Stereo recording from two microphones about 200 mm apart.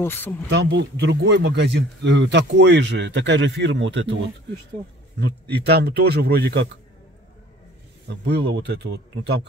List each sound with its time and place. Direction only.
0.0 s speech: 10° left (ahead or behind)
0.5 s speech: 55° right (ahead or behind)
5.2 s speech: 55° right (ahead or behind)
8.5 s speech: 55° right (ahead or behind)